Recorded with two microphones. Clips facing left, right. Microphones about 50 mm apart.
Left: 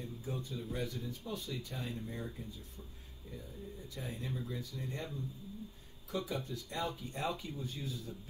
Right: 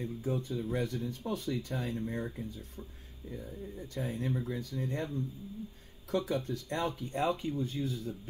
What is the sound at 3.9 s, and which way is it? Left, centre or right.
Speech, right.